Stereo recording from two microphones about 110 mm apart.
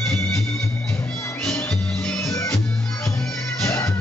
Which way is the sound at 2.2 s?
30° left (ahead or behind).